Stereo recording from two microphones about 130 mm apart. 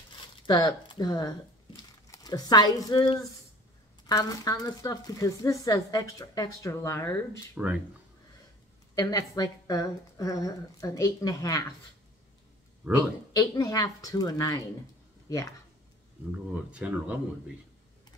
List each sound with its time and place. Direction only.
0.5 s speech: 30° left (ahead or behind)
7.5 s speech: 10° right (ahead or behind)
8.9 s speech: 25° left (ahead or behind)
12.8 s a man's voice: 5° right (ahead or behind)
13.3 s speech: 25° left (ahead or behind)
16.3 s speech: 10° right (ahead or behind)